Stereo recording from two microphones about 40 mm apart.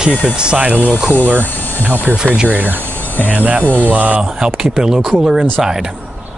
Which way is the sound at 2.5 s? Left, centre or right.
Right.